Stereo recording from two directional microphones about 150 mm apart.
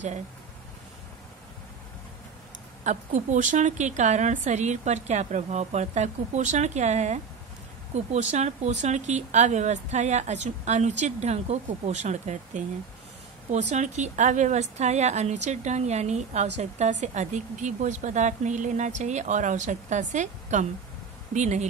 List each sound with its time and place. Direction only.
2.8 s a woman's voice: 55° right (ahead or behind)